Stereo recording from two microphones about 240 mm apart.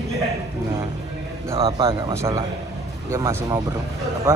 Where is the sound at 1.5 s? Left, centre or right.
Right.